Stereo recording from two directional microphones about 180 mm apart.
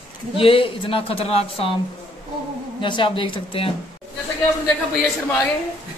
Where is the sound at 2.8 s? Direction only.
25° left (ahead or behind).